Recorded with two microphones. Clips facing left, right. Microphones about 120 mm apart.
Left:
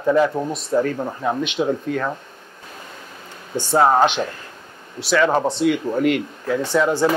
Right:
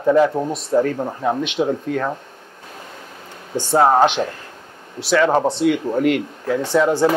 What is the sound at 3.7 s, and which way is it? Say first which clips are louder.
Speech: right 1 dB; 45° right (ahead or behind).